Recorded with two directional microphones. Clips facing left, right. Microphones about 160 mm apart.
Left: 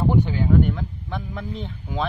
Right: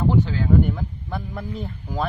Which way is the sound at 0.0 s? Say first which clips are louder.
Even; 15° left (ahead or behind).